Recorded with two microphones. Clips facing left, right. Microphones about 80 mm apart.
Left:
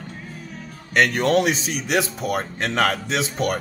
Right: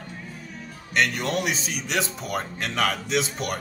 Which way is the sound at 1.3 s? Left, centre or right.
Left.